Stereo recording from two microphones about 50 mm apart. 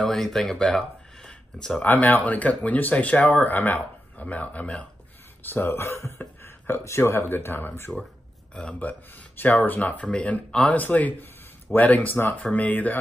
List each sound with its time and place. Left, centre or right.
0.0 s speech: centre
1.9 s speech: left
5.4 s speech: left
5.7 s speech: left
6.1 s a sound: left
7.0 s speech: left
8.5 s speech: left
9.4 s speech: left